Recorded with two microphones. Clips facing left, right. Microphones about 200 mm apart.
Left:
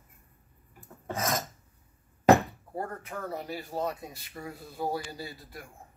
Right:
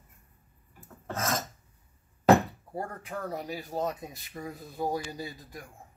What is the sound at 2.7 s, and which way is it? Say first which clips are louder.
Speech: even; 15° right (ahead or behind).